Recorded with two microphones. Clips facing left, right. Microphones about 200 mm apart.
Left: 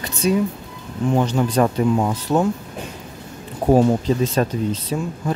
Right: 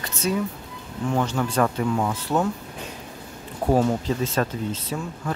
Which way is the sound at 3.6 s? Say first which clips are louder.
Left 5 dB; 15° left (ahead or behind).